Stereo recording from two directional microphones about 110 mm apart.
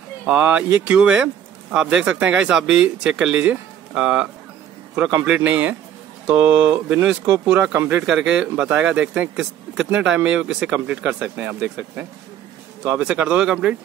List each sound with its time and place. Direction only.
0.3 s speech: 10° right (ahead or behind)
7.7 s speech: 20° right (ahead or behind)
8.1 s speech: 5° right (ahead or behind)